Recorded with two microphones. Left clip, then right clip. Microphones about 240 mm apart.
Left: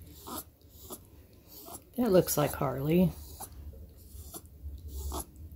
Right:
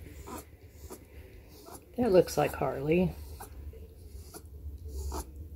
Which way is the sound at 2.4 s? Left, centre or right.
Left.